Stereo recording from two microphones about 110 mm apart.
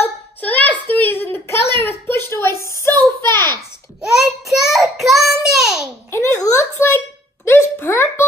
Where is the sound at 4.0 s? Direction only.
5° right (ahead or behind).